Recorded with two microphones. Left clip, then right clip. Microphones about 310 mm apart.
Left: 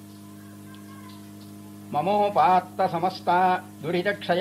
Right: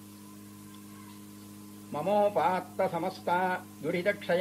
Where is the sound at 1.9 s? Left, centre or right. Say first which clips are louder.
Left 5 dB; left.